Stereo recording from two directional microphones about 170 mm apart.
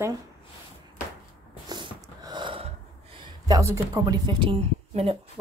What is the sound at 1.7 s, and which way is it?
Snort, 25° right (ahead or behind).